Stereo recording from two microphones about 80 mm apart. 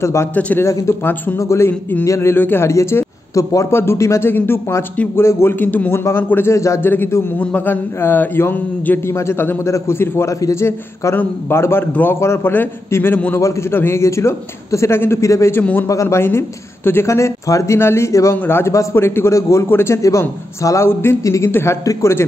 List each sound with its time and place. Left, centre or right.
0.0 s a man's voice: left
0.3 s a man's voice: centre
0.6 s a man's voice: left
1.4 s a man's voice: left
1.7 s a man's voice: left
6.9 s a man's voice: left
13.4 s a man's voice: left